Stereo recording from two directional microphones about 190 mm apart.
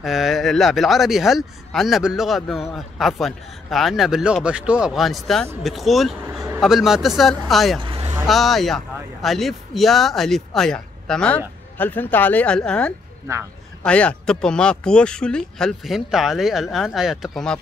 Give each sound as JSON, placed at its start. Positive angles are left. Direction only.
{"t": 0.0, "sound": "speech", "side_deg": 0}
{"t": 7.8, "sound": "a sound", "side_deg": -25}
{"t": 8.3, "sound": "speech", "side_deg": 0}